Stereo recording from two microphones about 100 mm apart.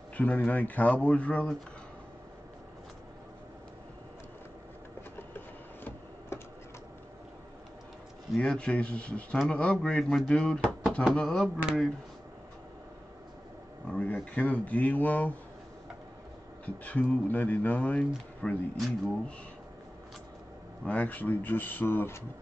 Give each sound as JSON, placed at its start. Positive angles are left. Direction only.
{"t": 0.2, "sound": "speech", "side_deg": 15}
{"t": 6.3, "sound": "a sound", "side_deg": 25}
{"t": 8.4, "sound": "speech", "side_deg": 10}
{"t": 13.8, "sound": "speech", "side_deg": 10}
{"t": 16.6, "sound": "speech", "side_deg": 15}
{"t": 20.8, "sound": "speech", "side_deg": 15}